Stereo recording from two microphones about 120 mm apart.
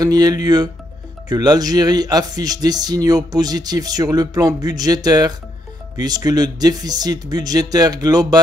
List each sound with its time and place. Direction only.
0.0 s speech: 35° right (ahead or behind)